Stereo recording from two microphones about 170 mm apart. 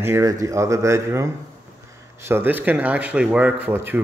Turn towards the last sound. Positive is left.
turn(degrees=-10)  # may be behind; listen again after turning